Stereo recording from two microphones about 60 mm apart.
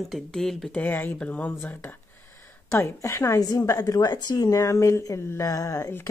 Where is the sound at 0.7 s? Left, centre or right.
Left.